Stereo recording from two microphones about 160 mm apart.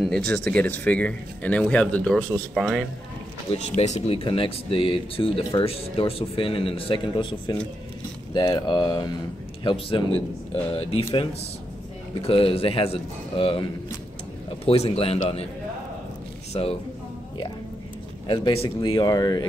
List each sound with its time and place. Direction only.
0.0 s speech: 5° left (ahead or behind)
3.4 s speech: 45° left (ahead or behind)
14.7 s speech: 35° left (ahead or behind)
16.5 s speech: 35° left (ahead or behind)
18.2 s speech: 30° left (ahead or behind)